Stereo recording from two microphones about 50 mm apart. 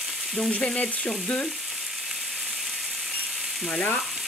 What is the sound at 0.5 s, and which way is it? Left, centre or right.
Frying, left.